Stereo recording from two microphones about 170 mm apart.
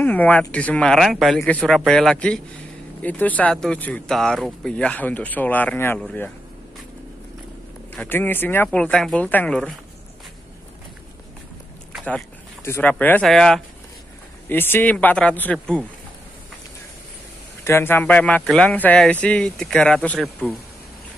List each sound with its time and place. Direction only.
0.0 s a man's voice: 10° left (ahead or behind)
7.9 s a man's voice: 10° left (ahead or behind)
11.9 s a sound: centre (ahead or behind)
12.6 s speech: 15° left (ahead or behind)
17.6 s speech: 15° left (ahead or behind)